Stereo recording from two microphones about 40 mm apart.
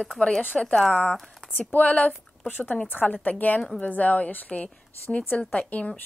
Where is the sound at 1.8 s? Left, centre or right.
Left.